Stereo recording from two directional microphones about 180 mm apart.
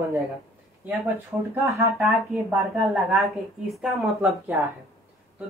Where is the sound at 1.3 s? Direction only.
5° right (ahead or behind).